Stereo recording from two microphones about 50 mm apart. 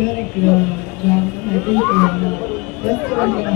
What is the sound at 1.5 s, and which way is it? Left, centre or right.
Speech, centre.